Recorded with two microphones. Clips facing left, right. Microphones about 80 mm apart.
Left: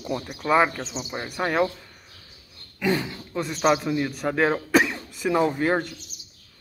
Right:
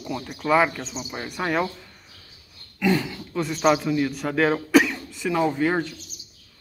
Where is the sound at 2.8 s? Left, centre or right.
Left.